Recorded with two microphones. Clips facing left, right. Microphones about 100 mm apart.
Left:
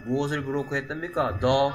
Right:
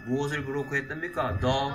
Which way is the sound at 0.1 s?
10° left (ahead or behind).